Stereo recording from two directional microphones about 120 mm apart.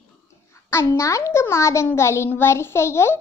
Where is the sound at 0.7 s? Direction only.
20° left (ahead or behind).